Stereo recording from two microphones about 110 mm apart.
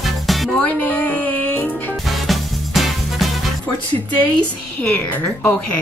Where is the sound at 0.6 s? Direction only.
15° left (ahead or behind).